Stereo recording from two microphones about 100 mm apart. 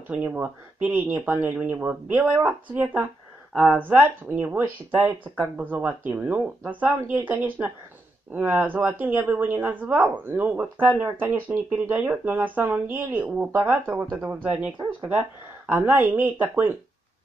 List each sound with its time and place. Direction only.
0.1 s speech: 15° right (ahead or behind)